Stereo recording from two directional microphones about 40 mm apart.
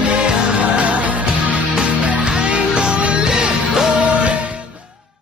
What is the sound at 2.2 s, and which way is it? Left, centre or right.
Music, right.